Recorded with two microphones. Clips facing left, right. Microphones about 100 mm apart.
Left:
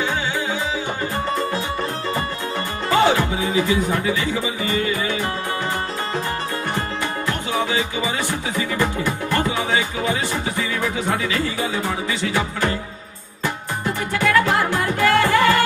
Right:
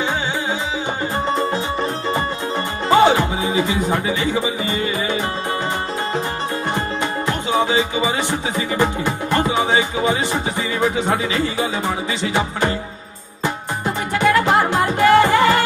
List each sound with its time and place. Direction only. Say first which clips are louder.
1.3 s music: right 3 dB; 20° right (ahead or behind)
2.9 s speech: right 4 dB; 20° right (ahead or behind)
7.2 s music: right 5 dB; 20° right (ahead or behind)